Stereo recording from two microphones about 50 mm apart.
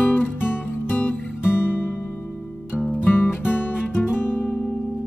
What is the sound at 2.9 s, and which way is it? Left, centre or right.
Music, left.